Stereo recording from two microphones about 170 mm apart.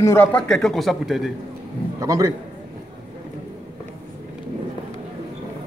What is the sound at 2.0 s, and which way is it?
Speech, 20° right (ahead or behind).